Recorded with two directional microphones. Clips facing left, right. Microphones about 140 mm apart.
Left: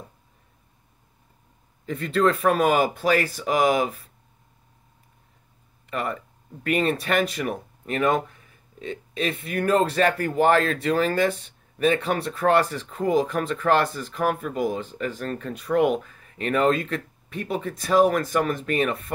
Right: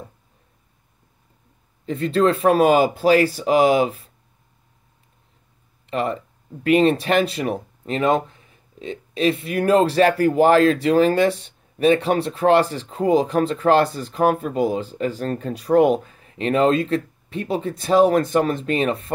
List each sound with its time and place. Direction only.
1.9 s speech: 30° right (ahead or behind)
5.9 s speech: 30° right (ahead or behind)